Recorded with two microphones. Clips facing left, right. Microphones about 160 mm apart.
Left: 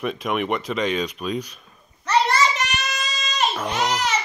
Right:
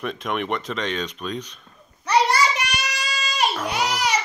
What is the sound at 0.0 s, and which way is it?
Speech, 5° left (ahead or behind).